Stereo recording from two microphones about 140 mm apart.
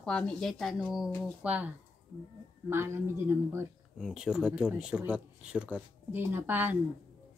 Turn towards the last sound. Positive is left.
turn(degrees=-15)  # may be behind; listen again after turning